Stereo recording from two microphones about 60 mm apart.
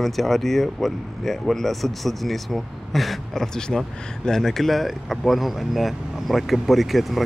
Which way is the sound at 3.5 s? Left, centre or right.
Centre.